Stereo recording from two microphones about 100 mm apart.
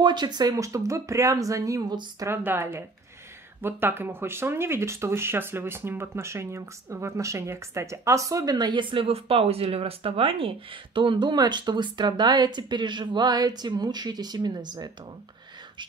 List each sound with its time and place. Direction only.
0.0 s speech: 45° right (ahead or behind)
2.2 s speech: 20° right (ahead or behind); by 14.9 s 45° right (ahead or behind)